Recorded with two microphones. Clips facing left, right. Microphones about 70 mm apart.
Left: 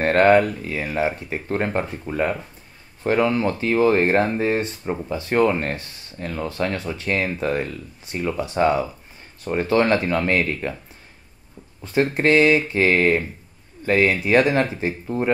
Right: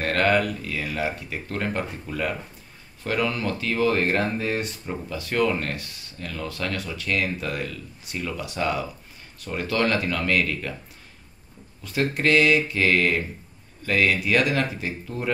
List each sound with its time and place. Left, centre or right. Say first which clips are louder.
0.0 s speech: left 7 dB; left
11.8 s speech: left 4 dB; left